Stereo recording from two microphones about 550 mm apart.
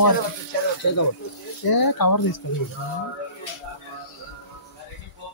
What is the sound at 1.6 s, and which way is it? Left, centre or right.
Speech, left.